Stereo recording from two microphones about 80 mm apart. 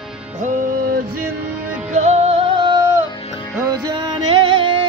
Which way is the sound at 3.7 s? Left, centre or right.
Right.